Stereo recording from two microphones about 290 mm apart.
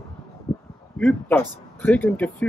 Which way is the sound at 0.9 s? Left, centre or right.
Centre.